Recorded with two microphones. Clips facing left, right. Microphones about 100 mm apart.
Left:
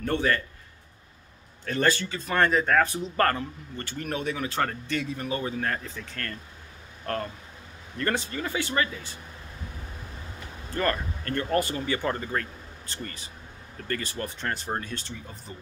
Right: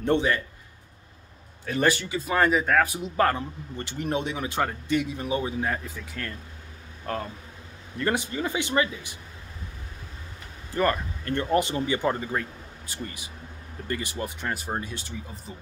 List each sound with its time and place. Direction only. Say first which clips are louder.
0.0 s a man's voice: right 2 dB; 20° right (ahead or behind)
1.7 s speech: right 1 dB; 10° right (ahead or behind)
8.0 s speech: right 2 dB; 15° right (ahead or behind)
10.7 s speech: right 3 dB; 15° right (ahead or behind)